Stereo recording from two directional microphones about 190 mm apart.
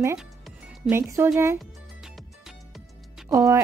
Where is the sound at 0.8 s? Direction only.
15° right (ahead or behind).